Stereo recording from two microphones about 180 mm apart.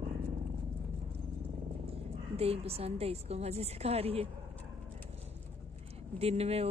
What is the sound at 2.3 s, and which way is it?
Speech, 35° right (ahead or behind).